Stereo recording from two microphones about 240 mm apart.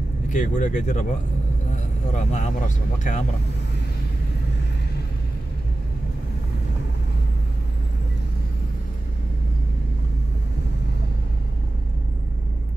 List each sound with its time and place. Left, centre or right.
0.3 s speech: left
2.1 s speech: left